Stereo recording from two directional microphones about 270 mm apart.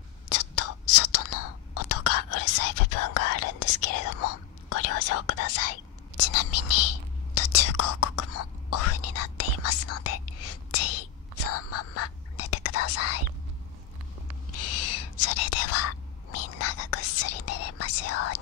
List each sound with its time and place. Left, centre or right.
0.3 s whispering: left
14.6 s whispering: left